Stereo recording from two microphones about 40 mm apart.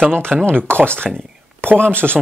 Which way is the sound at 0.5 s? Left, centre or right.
Right.